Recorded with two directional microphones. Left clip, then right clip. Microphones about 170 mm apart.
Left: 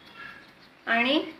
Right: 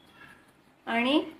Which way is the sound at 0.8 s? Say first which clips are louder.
Left 4 dB; 50° right (ahead or behind).